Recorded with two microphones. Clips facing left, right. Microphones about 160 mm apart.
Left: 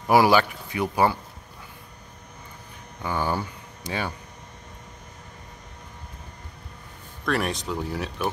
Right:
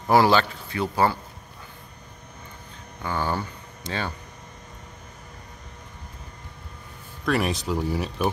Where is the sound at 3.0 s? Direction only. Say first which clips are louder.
Left 1 dB; 15° left (ahead or behind).